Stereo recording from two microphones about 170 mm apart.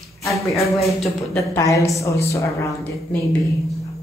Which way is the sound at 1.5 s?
20° left (ahead or behind).